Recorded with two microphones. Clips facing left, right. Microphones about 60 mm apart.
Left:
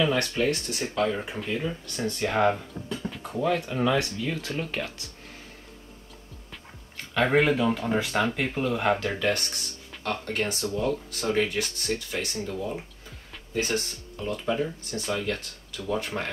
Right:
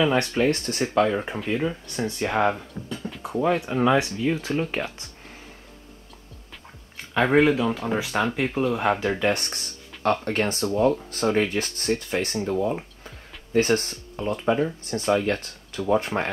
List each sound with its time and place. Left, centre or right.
0.0 s speech: right
0.5 s speech: right
1.1 s speech: right
1.7 s speech: centre
3.2 s speech: centre
7.2 s speech: centre; by 9.5 s right
10.0 s speech: right